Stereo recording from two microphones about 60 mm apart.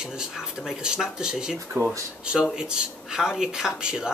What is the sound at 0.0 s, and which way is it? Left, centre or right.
Speech, centre.